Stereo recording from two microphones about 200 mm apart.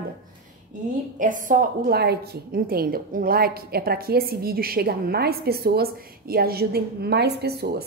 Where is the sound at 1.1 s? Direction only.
40° right (ahead or behind).